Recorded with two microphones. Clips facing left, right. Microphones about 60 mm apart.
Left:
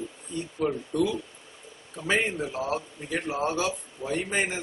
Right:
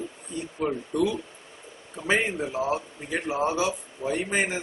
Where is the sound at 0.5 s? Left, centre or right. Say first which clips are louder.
Even; centre.